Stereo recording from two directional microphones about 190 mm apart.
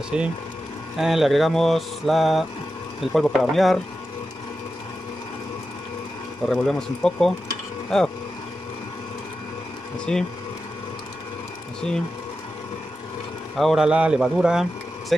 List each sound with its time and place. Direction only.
0.1 s mantra: 5° right (ahead or behind)
6.4 s mantra: centre (ahead or behind)
10.1 s mantra: 5° left (ahead or behind)
13.6 s speech: centre (ahead or behind)